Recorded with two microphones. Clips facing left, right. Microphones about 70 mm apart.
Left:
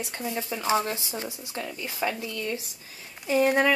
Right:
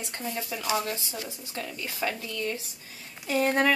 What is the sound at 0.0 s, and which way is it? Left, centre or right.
Speech, centre.